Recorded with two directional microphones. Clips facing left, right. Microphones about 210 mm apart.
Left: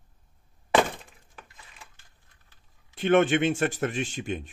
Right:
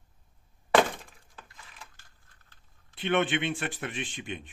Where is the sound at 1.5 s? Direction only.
20° left (ahead or behind).